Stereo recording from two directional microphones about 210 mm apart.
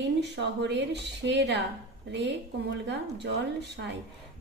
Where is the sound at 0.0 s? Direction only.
55° right (ahead or behind).